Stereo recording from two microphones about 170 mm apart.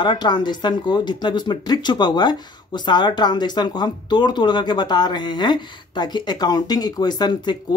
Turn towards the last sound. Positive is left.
turn(degrees=25)  # may be behind; listen again after turning